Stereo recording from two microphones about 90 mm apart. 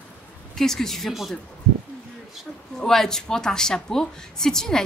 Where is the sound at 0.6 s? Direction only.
5° left (ahead or behind).